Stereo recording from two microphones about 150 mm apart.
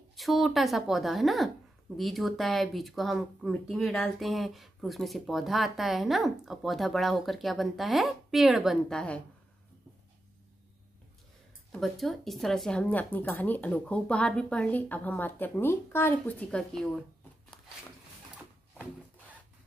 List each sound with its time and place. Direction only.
0.1 s speech: centre (ahead or behind)
11.7 s speech: centre (ahead or behind)